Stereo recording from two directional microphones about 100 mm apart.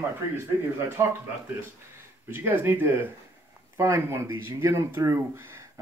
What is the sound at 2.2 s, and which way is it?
Speech, 20° right (ahead or behind).